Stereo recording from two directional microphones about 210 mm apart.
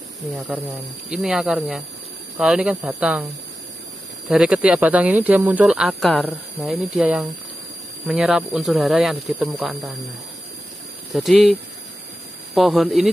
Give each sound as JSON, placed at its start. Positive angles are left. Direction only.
{"t": 1.1, "sound": "speech", "side_deg": 0}
{"t": 4.3, "sound": "speech", "side_deg": -5}
{"t": 11.1, "sound": "speech", "side_deg": 0}